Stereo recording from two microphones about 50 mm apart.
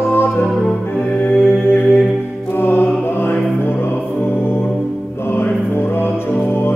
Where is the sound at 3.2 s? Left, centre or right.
Left.